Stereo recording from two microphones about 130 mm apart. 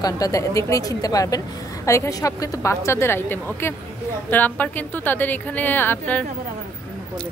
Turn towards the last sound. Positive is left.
turn(degrees=15)  # may be behind; listen again after turning